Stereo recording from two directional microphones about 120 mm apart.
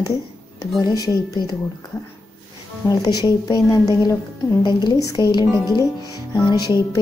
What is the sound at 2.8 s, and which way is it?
Speech, 35° left (ahead or behind).